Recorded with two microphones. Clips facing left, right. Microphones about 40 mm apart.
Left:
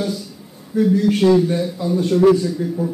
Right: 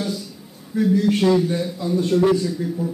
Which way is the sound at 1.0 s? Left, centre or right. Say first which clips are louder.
Left 3 dB; centre.